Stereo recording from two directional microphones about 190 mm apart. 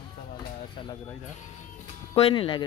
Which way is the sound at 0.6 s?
25° left (ahead or behind).